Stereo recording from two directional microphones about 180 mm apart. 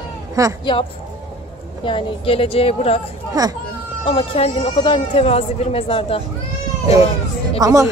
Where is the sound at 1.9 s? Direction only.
30° left (ahead or behind).